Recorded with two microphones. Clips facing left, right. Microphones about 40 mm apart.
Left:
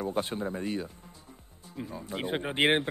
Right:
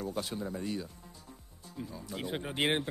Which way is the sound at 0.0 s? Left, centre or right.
Left.